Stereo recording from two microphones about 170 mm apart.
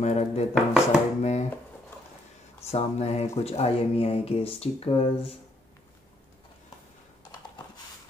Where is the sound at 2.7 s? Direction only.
40° left (ahead or behind).